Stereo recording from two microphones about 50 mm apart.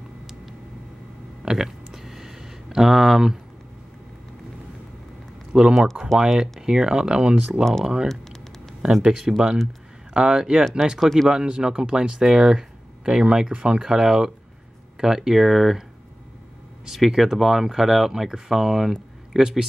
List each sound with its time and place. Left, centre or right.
1.4 s a sound: centre
5.8 s speech: centre
6.1 s speech: centre
8.1 s a sound: centre
8.8 s speech: centre
11.0 s speech: centre
11.2 s speech: centre
16.8 s speech: centre